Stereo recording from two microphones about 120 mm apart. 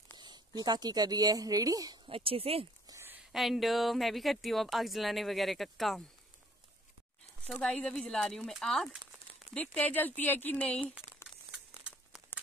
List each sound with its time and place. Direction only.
0.2 s speech: 35° right (ahead or behind)
2.0 s speech: 50° right (ahead or behind)
2.9 s a sound: 20° right (ahead or behind)
3.3 s speech: centre (ahead or behind)
7.4 s speech: 5° left (ahead or behind)
11.5 s crumpling: 10° right (ahead or behind)